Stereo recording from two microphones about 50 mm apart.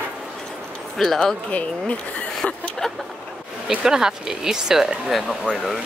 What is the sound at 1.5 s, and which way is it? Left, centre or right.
Speech, left.